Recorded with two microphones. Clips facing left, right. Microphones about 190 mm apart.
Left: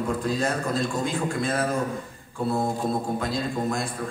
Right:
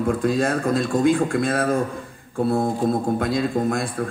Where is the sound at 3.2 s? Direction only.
55° right (ahead or behind).